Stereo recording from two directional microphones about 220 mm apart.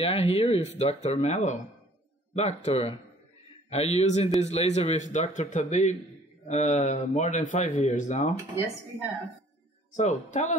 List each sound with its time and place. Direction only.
0.0 s speech: 25° left (ahead or behind)
9.9 s speech: 35° left (ahead or behind)